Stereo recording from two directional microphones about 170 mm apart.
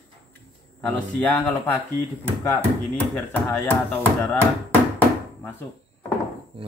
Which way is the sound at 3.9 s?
15° left (ahead or behind).